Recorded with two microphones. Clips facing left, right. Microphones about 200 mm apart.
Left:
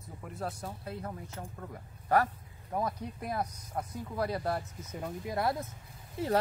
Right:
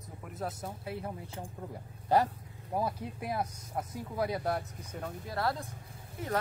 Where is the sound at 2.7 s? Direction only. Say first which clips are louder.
Right 1 dB; 10° right (ahead or behind).